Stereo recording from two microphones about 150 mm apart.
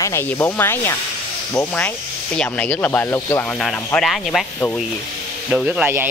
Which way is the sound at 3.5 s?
5° left (ahead or behind).